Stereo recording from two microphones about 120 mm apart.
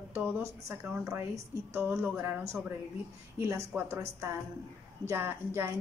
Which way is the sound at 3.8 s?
20° right (ahead or behind).